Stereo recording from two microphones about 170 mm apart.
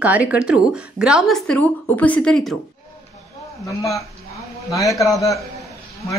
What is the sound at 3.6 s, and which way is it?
A man's voice, 20° left (ahead or behind).